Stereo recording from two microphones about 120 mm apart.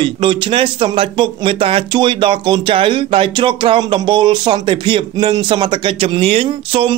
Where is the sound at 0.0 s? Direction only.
45° right (ahead or behind).